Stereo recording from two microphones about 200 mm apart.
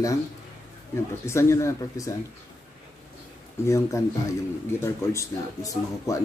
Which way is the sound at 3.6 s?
15° left (ahead or behind).